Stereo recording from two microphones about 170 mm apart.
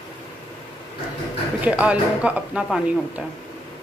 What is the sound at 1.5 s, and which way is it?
A woman's voice, 5° right (ahead or behind).